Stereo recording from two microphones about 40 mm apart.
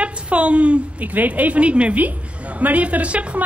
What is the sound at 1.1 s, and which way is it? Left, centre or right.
A woman's voice, right.